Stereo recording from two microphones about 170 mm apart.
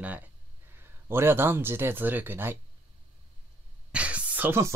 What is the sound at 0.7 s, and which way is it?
Speech, 15° right (ahead or behind).